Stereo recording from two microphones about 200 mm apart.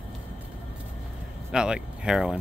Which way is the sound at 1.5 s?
5° right (ahead or behind).